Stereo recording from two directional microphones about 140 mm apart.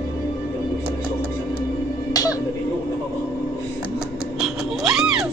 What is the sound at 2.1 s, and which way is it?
Music, 25° left (ahead or behind).